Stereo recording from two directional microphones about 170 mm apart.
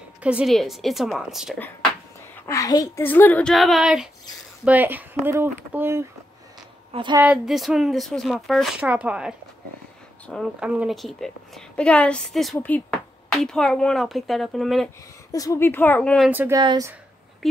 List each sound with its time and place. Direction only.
0.2 s speech: 5° right (ahead or behind)
2.4 s a child's voice: 20° left (ahead or behind)
3.1 s speech: 10° left (ahead or behind); by 6.0 s 15° right (ahead or behind)
6.9 s a woman's voice: 30° right (ahead or behind)
7.2 s speech: 5° right (ahead or behind)
10.6 s speech: 5° right (ahead or behind)
15.3 s speech: 20° left (ahead or behind)
16.3 s speech: 10° right (ahead or behind)
16.5 s speech: 20° right (ahead or behind)